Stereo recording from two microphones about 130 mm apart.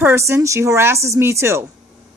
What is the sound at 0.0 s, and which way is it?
Speech, 20° right (ahead or behind).